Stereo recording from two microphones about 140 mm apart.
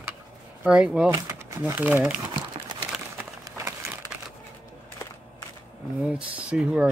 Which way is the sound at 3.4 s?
20° right (ahead or behind).